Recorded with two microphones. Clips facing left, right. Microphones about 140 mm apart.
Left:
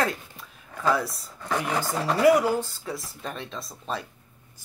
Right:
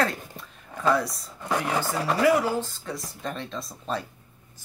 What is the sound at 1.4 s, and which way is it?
Speech, 10° right (ahead or behind).